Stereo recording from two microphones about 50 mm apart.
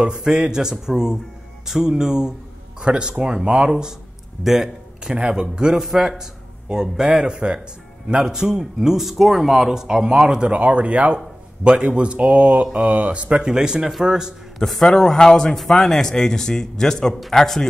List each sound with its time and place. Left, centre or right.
0.0 s speech: centre
13.5 s speech: centre
14.6 s a man's voice: centre